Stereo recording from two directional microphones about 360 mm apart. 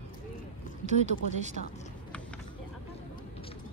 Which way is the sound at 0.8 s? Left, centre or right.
Centre.